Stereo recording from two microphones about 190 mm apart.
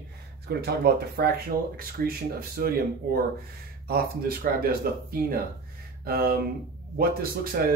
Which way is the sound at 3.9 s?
50° right (ahead or behind).